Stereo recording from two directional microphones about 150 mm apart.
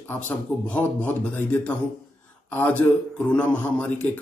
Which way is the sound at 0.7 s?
10° left (ahead or behind).